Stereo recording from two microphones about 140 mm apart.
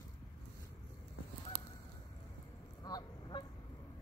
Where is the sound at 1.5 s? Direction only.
90° right.